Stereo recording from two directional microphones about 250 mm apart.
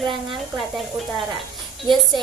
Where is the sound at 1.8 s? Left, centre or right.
Centre.